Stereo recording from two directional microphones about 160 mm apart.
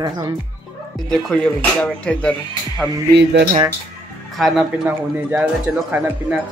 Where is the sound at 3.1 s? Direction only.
90° right.